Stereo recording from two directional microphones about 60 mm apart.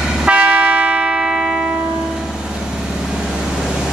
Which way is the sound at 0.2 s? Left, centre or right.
Right.